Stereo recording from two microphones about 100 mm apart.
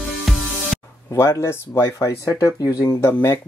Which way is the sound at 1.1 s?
30° left (ahead or behind).